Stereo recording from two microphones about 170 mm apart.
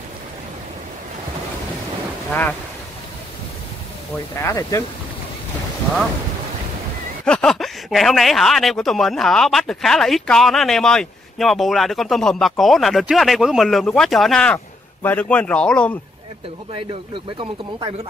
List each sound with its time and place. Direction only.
4.4 s speech: 20° left (ahead or behind)
7.2 s speech: 5° left (ahead or behind)
16.7 s speech: 30° right (ahead or behind)